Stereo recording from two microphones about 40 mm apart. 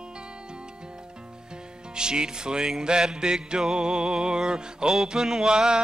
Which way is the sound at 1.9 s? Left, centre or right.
Right.